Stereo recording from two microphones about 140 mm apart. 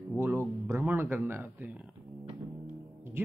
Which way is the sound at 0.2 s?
15° right (ahead or behind).